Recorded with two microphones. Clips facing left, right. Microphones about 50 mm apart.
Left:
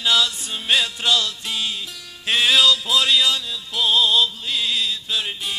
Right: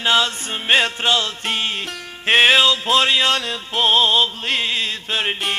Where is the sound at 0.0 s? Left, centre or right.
Right.